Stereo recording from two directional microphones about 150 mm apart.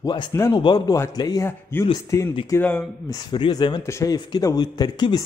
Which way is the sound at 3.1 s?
30° left (ahead or behind).